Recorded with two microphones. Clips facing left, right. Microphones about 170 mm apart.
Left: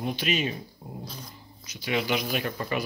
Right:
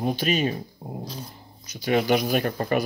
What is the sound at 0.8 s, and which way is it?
Speech, 50° right (ahead or behind).